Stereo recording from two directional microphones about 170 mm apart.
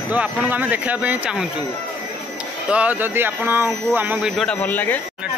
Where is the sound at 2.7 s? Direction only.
10° right (ahead or behind); by 5.0 s 10° left (ahead or behind).